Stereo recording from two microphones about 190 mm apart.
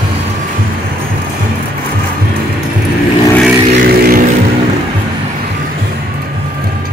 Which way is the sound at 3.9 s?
50° right (ahead or behind).